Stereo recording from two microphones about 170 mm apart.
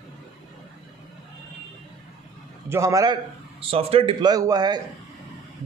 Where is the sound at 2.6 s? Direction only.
15° right (ahead or behind).